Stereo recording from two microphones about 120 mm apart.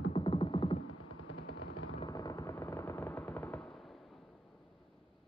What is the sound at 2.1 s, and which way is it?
Machine gun, 30° left (ahead or behind).